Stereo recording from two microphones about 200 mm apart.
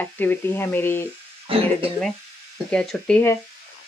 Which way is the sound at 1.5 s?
25° right (ahead or behind).